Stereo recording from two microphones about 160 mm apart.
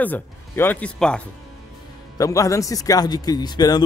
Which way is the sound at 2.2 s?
20° left (ahead or behind).